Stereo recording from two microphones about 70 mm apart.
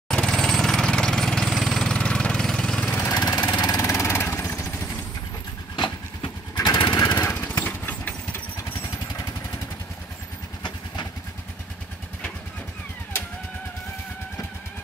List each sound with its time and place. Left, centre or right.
0.1 s jackhammer: centre
3.4 s engine: left
3.8 s vehicle: left
6.5 s lawn mower: left
7.2 s vehicle: left